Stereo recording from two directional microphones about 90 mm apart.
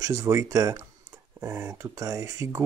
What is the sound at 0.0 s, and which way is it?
Speech, 40° right (ahead or behind).